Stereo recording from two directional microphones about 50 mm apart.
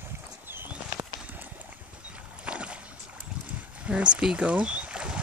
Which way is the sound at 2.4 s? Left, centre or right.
Right.